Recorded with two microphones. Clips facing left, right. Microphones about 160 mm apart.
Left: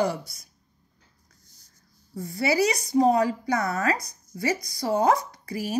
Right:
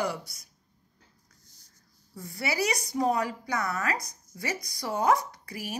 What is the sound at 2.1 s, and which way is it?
A woman's voice, 30° left (ahead or behind).